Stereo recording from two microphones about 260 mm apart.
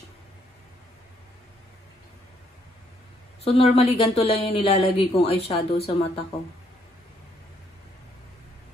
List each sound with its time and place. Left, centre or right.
3.4 s speech: left